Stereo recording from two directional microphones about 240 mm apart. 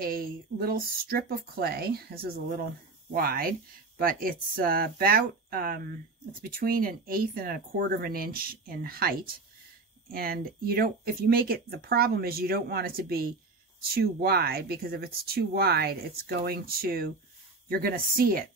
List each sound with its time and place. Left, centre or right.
0.0 s speech: right